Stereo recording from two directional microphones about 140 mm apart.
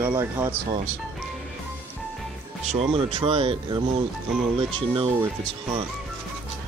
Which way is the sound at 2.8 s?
40° right (ahead or behind).